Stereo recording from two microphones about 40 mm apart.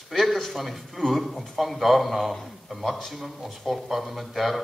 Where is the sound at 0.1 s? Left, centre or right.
Centre.